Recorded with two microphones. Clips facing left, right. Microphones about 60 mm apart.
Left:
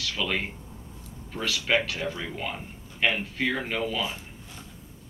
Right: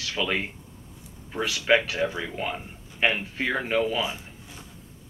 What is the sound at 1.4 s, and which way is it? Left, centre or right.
Speech, right.